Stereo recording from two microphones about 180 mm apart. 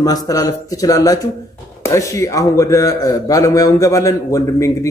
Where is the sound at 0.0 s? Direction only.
20° left (ahead or behind).